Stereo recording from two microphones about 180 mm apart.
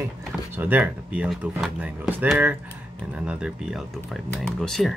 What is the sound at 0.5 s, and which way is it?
Speech, 10° right (ahead or behind).